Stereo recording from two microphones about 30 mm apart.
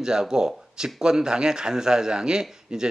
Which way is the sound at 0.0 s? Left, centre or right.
Right.